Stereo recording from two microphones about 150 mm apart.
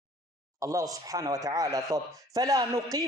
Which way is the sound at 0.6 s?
25° right (ahead or behind).